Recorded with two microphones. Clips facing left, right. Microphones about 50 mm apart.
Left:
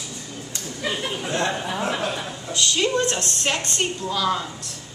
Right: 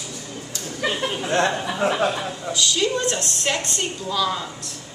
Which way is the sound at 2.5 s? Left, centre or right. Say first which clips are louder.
Even; left.